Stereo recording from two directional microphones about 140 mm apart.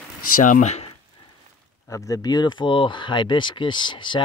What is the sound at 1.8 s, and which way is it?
Speech, 25° left (ahead or behind).